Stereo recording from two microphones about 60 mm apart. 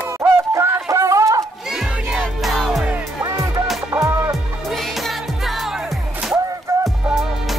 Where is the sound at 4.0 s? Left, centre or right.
Right.